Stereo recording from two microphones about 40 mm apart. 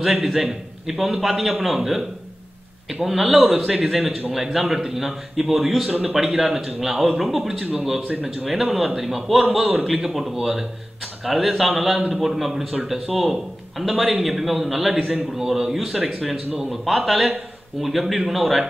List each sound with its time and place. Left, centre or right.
0.0 s a man's voice: centre
3.1 s a man's voice: centre